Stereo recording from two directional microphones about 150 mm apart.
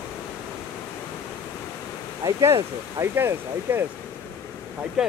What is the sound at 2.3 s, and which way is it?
Speech, 20° right (ahead or behind).